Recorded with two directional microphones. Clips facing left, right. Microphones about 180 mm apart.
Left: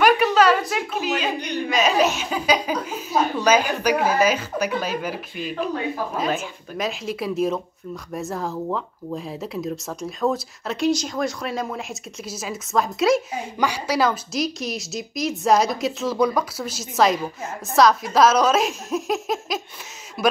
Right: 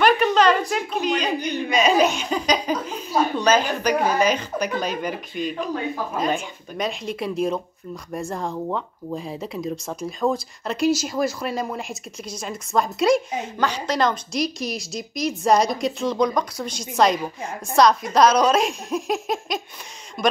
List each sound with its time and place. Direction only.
0.0 s speech: 5° left (ahead or behind)